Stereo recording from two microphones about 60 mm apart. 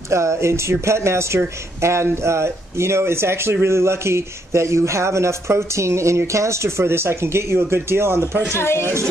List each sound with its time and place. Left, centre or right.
0.1 s speech: right
8.5 s speech: left